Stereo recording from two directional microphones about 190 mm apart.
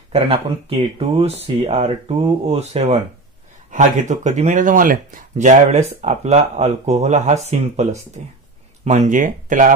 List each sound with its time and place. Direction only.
0.1 s speech: 30° right (ahead or behind)